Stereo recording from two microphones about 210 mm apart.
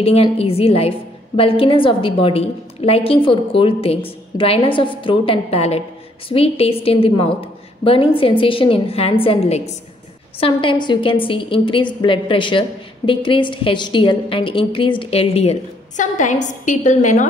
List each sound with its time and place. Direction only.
0.0 s a woman's voice: 30° left (ahead or behind)